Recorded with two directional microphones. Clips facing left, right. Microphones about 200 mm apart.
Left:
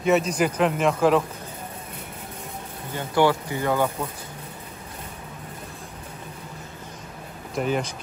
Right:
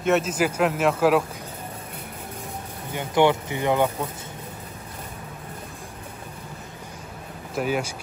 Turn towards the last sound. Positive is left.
turn(degrees=-5)  # may be behind; listen again after turning